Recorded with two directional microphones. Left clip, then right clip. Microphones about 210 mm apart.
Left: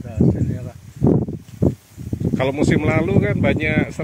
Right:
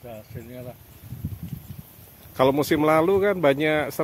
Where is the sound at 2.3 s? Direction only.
20° right (ahead or behind).